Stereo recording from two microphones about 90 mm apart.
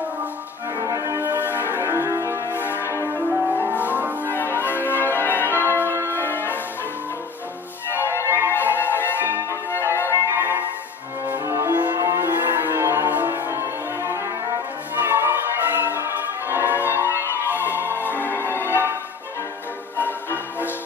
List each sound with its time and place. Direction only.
0.7 s music: 40° right (ahead or behind)
1.2 s music: 20° right (ahead or behind)
1.5 s music: 25° left (ahead or behind)
1.9 s music: 35° right (ahead or behind)
2.4 s music: 25° left (ahead or behind)
3.6 s music: 20° right (ahead or behind)
4.3 s change ringing: 25° left (ahead or behind)
6.0 s music: 25° left (ahead or behind)
7.9 s music: 25° left (ahead or behind)
10.1 s music: 25° right (ahead or behind)
12.4 s music: 25° right (ahead or behind)
17.2 s music: 25° left (ahead or behind)
20.0 s music: 25° left (ahead or behind)